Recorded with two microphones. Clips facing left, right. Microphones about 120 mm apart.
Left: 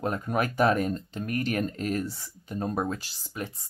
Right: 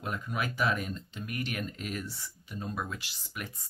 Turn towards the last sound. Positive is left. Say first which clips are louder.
# left 6 dB
turn(degrees=35)  # may be behind; listen again after turning